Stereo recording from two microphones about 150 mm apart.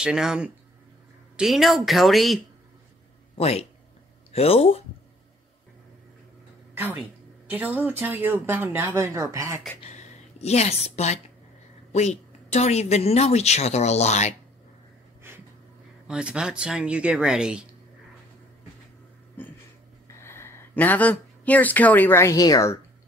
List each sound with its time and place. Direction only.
0.0 s speech: 5° right (ahead or behind)
3.3 s speech: 45° left (ahead or behind)
6.7 s speech: 15° right (ahead or behind)
9.8 s a sound: 45° left (ahead or behind)
11.9 s a woman's voice: 50° left (ahead or behind)
15.2 s a sound: 15° right (ahead or behind)
16.1 s speech: 5° right (ahead or behind)
19.4 s a sound: 10° left (ahead or behind)
20.2 s speech: 15° left (ahead or behind)